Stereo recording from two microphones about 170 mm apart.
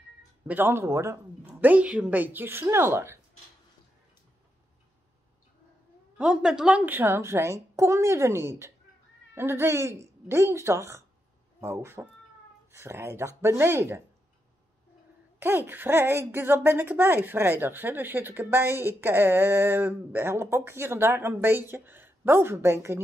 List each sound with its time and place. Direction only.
0.5 s speech: 10° right (ahead or behind)
6.1 s speech: 5° right (ahead or behind)
15.3 s speech: 10° right (ahead or behind)